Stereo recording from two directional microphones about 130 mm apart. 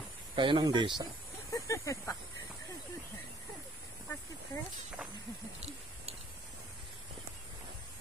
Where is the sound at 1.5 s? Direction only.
25° left (ahead or behind).